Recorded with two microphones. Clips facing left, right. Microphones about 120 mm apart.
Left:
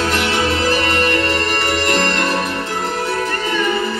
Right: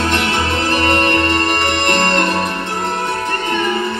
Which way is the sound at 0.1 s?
55° right (ahead or behind).